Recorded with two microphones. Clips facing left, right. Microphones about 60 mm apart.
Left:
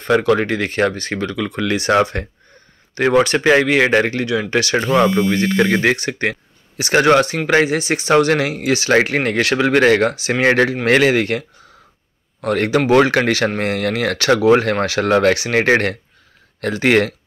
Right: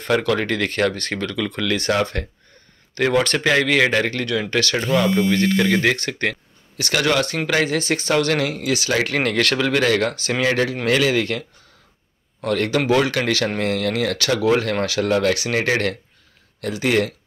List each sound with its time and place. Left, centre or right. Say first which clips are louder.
0.1 s speech: left 4 dB; centre
2.9 s speech: left 4 dB; left
5.9 s speech: left 3 dB; centre
6.8 s speech: left 7 dB; left
9.6 s speech: left 8 dB; left
10.1 s speech: left 3 dB; centre
10.4 s speech: left 5 dB; left
12.4 s speech: left 3 dB; left
12.9 s speech: left 7 dB; left
15.0 s speech: left 5 dB; left
16.6 s speech: left 5 dB; left